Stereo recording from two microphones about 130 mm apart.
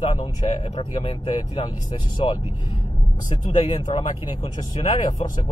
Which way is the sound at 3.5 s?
45° left (ahead or behind).